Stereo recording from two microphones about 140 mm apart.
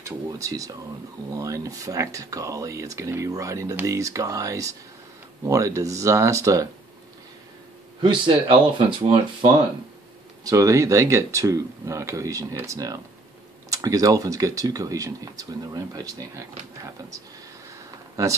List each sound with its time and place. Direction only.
0.0 s speech: 25° right (ahead or behind)
8.0 s speech: 35° right (ahead or behind)
10.4 s speech: 25° right (ahead or behind)